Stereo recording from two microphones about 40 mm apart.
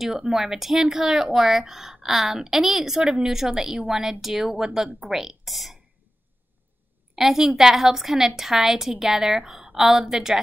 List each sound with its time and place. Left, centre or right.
0.0 s speech: centre
3.0 s a woman's voice: right
3.3 s speech: centre
7.2 s speech: centre